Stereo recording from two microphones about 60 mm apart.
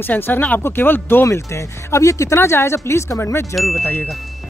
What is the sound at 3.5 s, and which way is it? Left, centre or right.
Ding, centre.